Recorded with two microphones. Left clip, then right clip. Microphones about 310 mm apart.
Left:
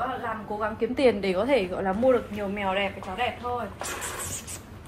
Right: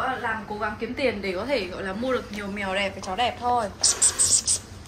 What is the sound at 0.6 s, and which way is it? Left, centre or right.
A woman's voice, left.